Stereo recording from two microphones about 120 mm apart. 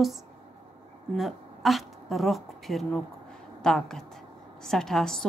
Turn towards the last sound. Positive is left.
turn(degrees=5)  # may be behind; listen again after turning